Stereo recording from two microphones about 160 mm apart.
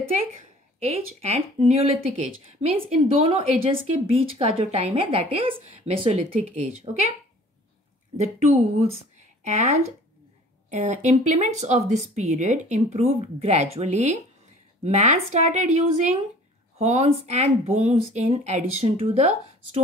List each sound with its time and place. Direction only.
0.7 s speech: 40° right (ahead or behind)
2.8 s speech: 35° right (ahead or behind)
8.2 s speech: 45° right (ahead or behind)